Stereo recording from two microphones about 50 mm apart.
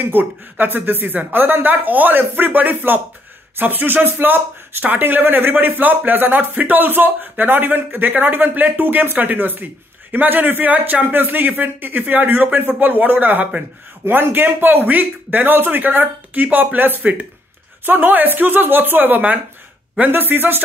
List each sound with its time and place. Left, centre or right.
0.0 s speech: right